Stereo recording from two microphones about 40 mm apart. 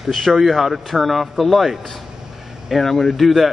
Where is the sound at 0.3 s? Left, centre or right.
Centre.